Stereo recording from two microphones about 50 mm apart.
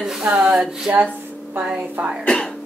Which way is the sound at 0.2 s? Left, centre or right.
Right.